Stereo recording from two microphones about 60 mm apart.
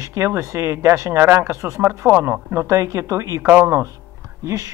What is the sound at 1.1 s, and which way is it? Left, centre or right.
Speech, right.